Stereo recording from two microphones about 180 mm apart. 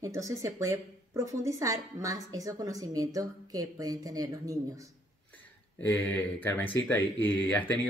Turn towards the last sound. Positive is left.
turn(degrees=10)  # may be behind; listen again after turning